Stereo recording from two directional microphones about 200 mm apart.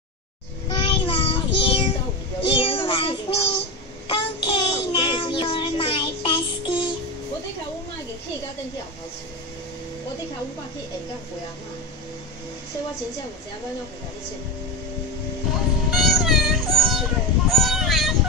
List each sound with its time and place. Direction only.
0.7 s child singing: 25° left (ahead or behind)
15.5 s music: centre (ahead or behind)
17.5 s a sound: centre (ahead or behind)